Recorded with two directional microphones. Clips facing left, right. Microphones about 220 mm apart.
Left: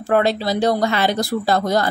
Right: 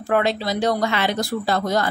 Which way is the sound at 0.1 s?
35° left (ahead or behind).